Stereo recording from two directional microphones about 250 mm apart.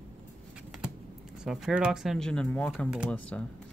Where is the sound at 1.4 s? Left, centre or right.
Centre.